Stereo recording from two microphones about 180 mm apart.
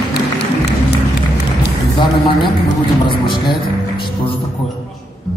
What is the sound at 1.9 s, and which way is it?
A man's voice, 25° left (ahead or behind).